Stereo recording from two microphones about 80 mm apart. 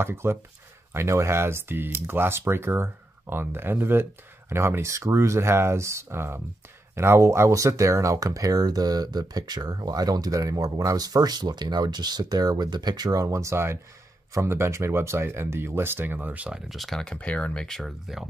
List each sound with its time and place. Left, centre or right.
0.0 s speech: right; by 16.7 s centre
16.7 s speech: centre